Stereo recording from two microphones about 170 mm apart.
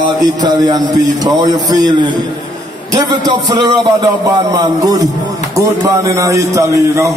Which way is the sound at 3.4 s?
25° right (ahead or behind).